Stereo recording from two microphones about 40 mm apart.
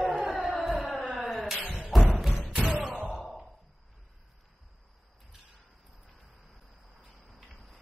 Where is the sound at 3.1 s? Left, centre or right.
Centre.